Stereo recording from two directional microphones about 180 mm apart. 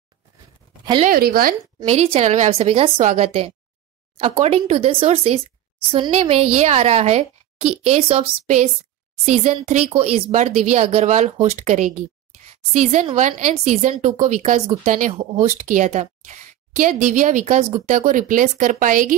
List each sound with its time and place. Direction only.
1.0 s speech: 55° right (ahead or behind)
1.9 s speech: 35° right (ahead or behind)